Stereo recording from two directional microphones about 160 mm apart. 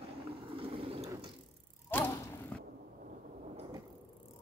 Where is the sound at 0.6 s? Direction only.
35° right (ahead or behind).